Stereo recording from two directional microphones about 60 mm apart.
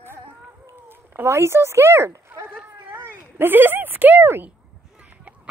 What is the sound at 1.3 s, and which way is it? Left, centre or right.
Speech, right.